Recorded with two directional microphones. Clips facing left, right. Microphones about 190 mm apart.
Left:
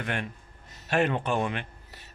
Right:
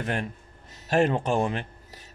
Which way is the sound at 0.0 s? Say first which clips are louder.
Right 3 dB; 35° right (ahead or behind).